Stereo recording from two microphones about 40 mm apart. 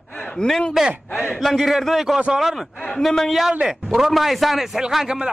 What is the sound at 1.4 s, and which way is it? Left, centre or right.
Speech, centre.